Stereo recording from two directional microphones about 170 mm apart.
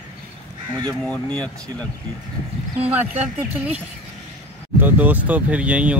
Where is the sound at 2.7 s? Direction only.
40° right (ahead or behind).